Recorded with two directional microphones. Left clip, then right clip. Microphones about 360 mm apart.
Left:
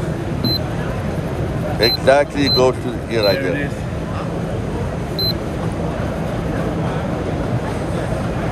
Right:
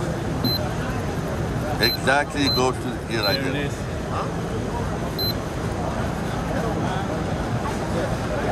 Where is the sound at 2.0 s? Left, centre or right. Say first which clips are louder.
Left 9 dB; centre.